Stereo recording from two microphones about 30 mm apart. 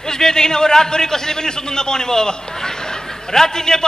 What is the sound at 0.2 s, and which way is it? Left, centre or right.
A man's voice, left.